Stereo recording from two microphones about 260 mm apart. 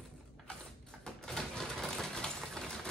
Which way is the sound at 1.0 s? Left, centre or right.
Centre.